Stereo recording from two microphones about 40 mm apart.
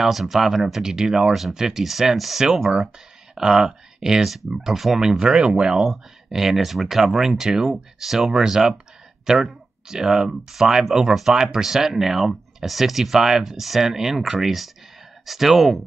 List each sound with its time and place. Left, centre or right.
0.0 s speech: centre
4.2 s speech: centre
5.2 s speech: right; by 8.2 s centre
8.2 s speech: right; by 15.8 s centre